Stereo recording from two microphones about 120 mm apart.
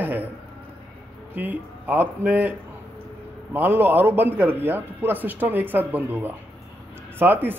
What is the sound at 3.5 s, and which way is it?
A man's voice, 15° right (ahead or behind).